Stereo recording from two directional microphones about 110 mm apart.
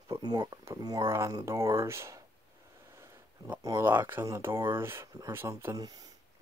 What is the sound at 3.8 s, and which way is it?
Speech, 20° right (ahead or behind).